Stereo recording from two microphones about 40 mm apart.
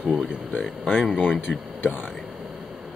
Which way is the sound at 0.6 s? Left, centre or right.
Left.